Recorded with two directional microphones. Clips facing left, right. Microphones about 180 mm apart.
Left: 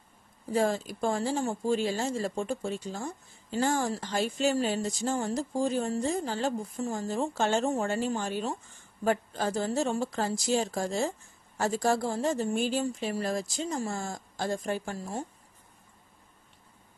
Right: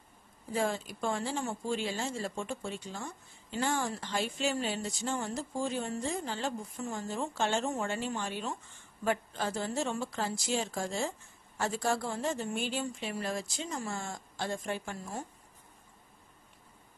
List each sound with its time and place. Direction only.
0.5 s speech: 40° left (ahead or behind)